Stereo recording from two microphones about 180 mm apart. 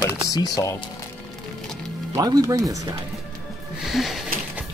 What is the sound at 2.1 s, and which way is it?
Speech, 20° right (ahead or behind).